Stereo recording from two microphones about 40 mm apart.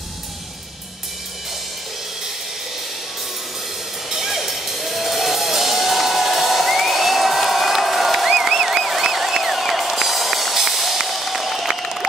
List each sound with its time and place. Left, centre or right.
4.1 s music: centre